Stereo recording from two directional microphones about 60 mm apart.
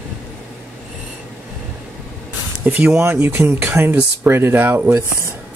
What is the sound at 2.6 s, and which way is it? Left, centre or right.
Speech, right.